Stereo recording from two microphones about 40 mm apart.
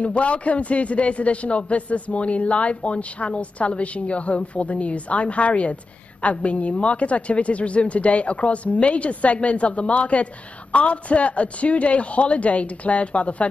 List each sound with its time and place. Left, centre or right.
0.0 s a man's voice: left